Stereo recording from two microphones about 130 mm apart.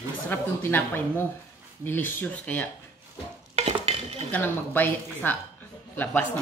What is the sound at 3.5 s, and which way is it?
Dishes, 50° right (ahead or behind).